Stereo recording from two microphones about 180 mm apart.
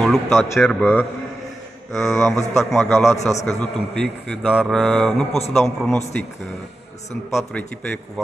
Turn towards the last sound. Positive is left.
turn(degrees=5)  # may be behind; listen again after turning